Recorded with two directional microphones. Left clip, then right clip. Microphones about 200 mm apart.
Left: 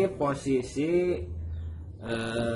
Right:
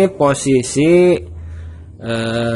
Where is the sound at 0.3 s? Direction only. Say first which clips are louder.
Right 13 dB; 45° right (ahead or behind).